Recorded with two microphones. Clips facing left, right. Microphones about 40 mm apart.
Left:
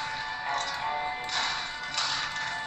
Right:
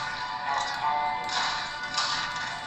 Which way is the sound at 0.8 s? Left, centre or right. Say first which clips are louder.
Right 4 dB; centre.